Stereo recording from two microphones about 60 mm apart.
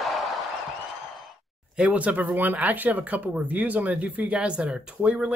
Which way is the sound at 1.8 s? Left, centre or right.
Right.